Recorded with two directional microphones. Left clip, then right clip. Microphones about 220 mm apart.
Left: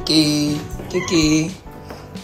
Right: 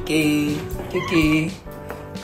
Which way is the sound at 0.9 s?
15° left (ahead or behind).